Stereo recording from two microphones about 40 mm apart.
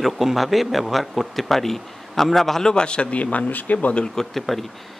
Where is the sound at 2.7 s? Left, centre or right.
Left.